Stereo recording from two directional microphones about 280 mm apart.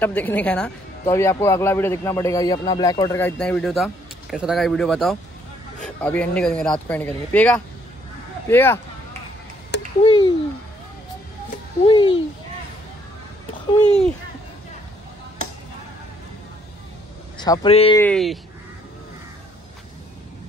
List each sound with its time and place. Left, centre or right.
0.0 s speech: centre
9.7 s a sound: left
10.0 s speech: centre
11.9 s speech: centre
13.8 s speech: centre
17.4 s speech: centre
17.9 s speech: centre